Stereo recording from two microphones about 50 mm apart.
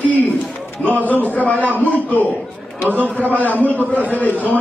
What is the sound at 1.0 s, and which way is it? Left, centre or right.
A man's voice, left.